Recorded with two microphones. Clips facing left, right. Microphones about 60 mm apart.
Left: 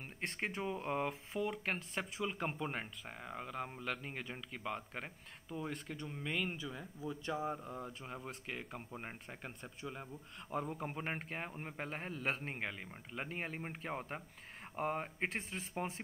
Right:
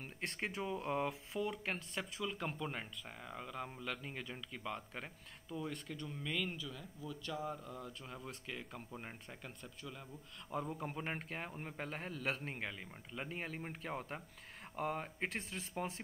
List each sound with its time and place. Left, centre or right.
0.0 s speech: centre
2.0 s speech: left
10.5 s speech: centre
15.2 s speech: centre